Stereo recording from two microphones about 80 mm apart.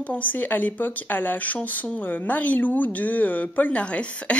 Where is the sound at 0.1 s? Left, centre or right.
Centre.